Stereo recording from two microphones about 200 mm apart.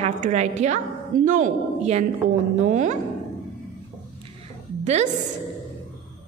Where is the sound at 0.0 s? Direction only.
35° right (ahead or behind).